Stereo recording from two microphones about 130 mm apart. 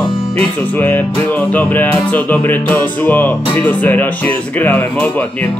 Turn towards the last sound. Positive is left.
turn(degrees=15)  # may be behind; listen again after turning